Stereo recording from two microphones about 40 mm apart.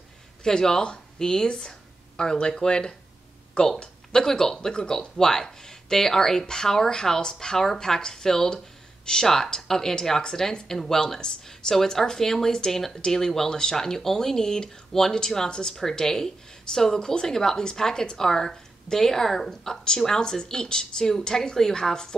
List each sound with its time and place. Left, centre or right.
0.4 s a woman's voice: centre